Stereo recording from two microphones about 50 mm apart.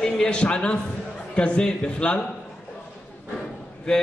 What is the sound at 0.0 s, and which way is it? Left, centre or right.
A man's voice, centre.